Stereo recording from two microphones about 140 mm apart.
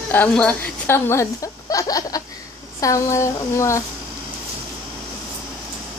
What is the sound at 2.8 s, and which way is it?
Speech, 20° left (ahead or behind).